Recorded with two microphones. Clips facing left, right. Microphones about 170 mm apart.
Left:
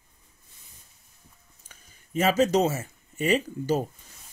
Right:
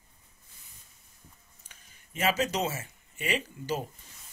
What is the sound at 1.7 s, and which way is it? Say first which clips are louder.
Speech: left 15 dB; 40° left (ahead or behind).